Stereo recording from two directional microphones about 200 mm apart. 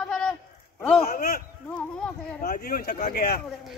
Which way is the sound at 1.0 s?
45° left (ahead or behind).